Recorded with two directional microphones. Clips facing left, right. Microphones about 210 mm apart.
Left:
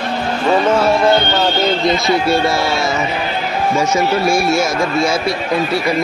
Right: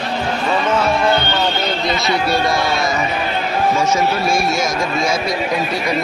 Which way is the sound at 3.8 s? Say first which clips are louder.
Left 2 dB; 10° left (ahead or behind).